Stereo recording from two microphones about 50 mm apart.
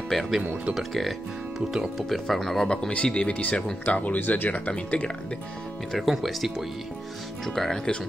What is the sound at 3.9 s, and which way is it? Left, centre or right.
Speech, left.